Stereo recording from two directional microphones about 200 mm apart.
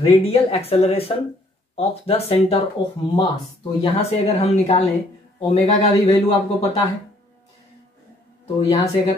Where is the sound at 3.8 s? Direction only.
30° left (ahead or behind).